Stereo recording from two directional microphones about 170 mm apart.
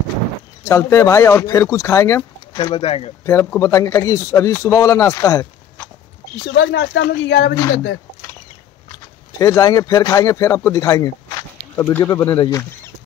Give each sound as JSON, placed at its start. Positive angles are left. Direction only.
{"t": 0.7, "sound": "speech", "side_deg": 15}
{"t": 3.3, "sound": "speech", "side_deg": 15}
{"t": 6.5, "sound": "speech", "side_deg": 90}
{"t": 9.4, "sound": "speech", "side_deg": 20}